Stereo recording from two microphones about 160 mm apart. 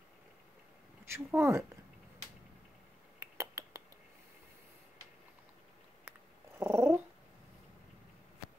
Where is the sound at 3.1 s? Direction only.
20° right (ahead or behind).